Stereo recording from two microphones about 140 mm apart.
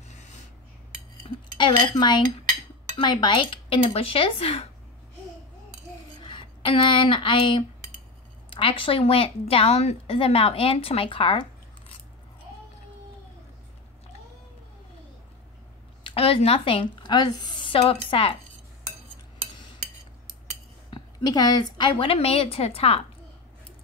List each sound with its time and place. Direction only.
0.1 s a sound: 55° left (ahead or behind)
1.6 s a woman's voice: 30° left (ahead or behind)
6.2 s a woman's voice: 35° left (ahead or behind)
16.0 s a woman's voice: 40° left (ahead or behind)
20.9 s a woman's voice: 30° left (ahead or behind); by 23.0 s 45° left (ahead or behind)